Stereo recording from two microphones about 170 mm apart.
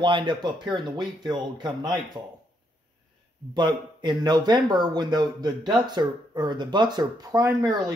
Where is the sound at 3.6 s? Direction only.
25° right (ahead or behind).